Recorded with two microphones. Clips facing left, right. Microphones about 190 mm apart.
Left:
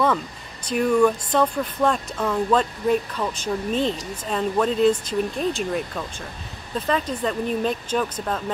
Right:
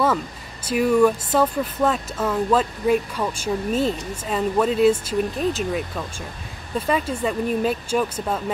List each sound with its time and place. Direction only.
0.7 s speech: 5° right (ahead or behind)